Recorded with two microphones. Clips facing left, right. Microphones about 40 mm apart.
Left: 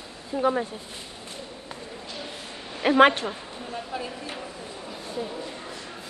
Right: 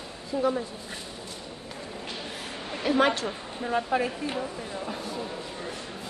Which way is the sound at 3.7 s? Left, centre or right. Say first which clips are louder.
Right 8 dB; right.